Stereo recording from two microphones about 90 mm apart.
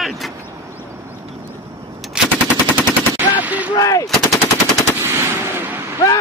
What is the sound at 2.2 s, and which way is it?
Machine gun, 10° right (ahead or behind).